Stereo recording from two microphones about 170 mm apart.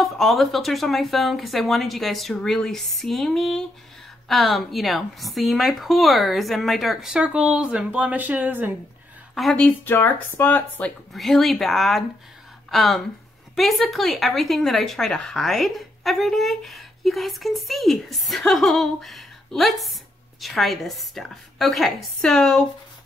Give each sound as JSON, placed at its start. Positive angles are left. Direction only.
{"t": 0.0, "sound": "speech", "side_deg": 0}
{"t": 9.3, "sound": "speech", "side_deg": 0}